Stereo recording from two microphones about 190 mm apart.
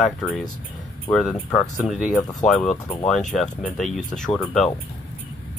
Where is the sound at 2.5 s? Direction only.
Centre (ahead or behind).